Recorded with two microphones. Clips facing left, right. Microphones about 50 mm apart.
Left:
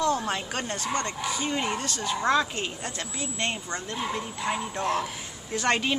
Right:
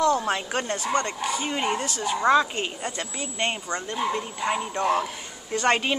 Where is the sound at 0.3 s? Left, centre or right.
Right.